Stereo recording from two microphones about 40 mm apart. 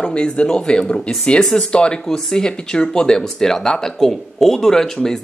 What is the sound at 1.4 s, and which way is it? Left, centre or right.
Speech, centre.